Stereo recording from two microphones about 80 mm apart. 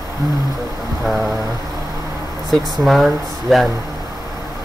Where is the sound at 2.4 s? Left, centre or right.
Centre.